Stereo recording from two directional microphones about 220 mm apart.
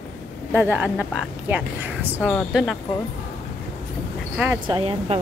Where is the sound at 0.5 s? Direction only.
10° right (ahead or behind).